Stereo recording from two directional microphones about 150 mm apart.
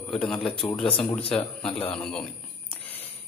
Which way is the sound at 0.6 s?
35° left (ahead or behind).